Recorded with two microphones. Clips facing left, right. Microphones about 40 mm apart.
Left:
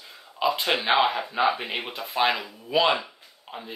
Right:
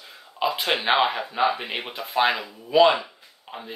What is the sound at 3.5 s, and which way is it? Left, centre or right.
Speech, centre.